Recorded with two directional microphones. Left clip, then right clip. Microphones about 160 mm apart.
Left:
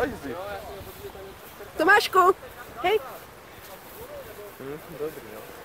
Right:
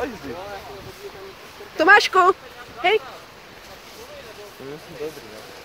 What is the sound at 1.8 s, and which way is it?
Speech, 10° right (ahead or behind).